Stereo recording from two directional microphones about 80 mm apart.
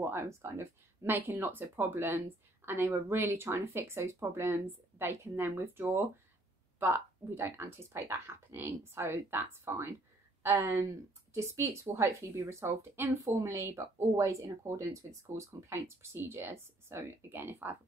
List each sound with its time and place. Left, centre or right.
0.1 s a woman's voice: right